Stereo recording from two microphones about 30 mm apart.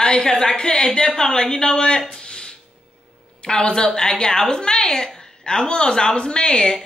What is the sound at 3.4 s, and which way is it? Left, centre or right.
Speech, left.